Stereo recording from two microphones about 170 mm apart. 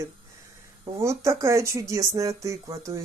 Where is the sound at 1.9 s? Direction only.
20° right (ahead or behind).